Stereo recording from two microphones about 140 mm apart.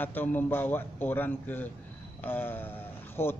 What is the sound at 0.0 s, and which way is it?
A man's voice, 15° left (ahead or behind).